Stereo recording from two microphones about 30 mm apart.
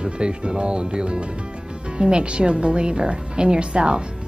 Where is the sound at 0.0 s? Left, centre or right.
Right.